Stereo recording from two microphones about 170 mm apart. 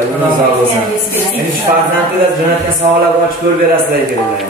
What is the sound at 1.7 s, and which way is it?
Speech, 50° right (ahead or behind).